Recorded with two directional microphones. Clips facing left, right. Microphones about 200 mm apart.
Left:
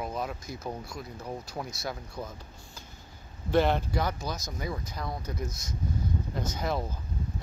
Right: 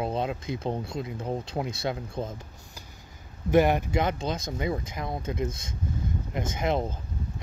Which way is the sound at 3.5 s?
15° right (ahead or behind).